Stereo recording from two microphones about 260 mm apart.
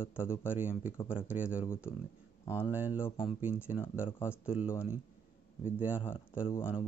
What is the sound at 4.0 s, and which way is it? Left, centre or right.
Speech, centre.